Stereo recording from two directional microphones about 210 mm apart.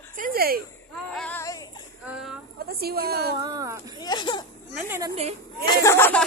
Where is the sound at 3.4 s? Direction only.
15° right (ahead or behind).